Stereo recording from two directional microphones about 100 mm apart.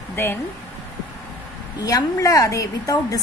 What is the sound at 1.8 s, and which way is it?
A woman's voice, 35° left (ahead or behind).